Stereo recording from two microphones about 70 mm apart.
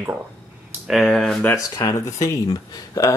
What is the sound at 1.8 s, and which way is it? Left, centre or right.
Speech, left.